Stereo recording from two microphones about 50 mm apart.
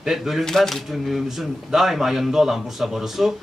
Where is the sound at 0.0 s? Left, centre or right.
Centre.